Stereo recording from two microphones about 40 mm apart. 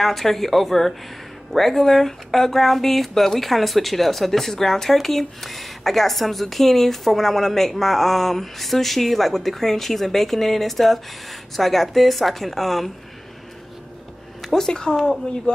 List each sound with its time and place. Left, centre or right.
0.0 s speech: centre
14.4 s speech: centre